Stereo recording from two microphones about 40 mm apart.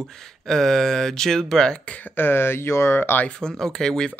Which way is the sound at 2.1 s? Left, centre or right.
Left.